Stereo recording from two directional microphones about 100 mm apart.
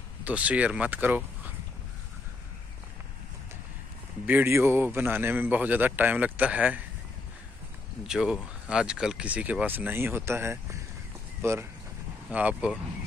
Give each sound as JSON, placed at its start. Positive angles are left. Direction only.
{"t": 0.2, "sound": "speech", "side_deg": -15}
{"t": 4.3, "sound": "speech", "side_deg": -20}
{"t": 8.1, "sound": "speech", "side_deg": -5}
{"t": 12.3, "sound": "speech", "side_deg": -15}